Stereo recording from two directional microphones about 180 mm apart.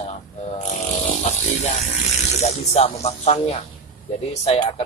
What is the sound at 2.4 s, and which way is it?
Speech, 40° left (ahead or behind).